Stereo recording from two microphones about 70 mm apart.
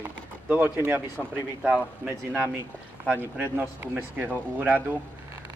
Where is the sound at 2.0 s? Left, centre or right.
Centre.